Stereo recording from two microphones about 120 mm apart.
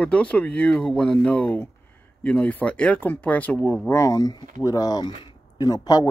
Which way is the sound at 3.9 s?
30° left (ahead or behind).